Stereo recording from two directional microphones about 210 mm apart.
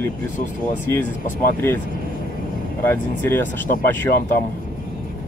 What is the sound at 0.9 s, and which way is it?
Speech, 10° left (ahead or behind).